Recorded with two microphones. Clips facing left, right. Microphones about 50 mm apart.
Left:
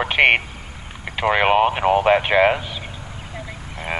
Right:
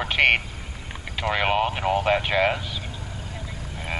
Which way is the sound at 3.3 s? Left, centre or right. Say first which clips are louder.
Left 3 dB; left.